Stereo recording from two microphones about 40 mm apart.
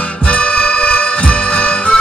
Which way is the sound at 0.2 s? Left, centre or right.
Left.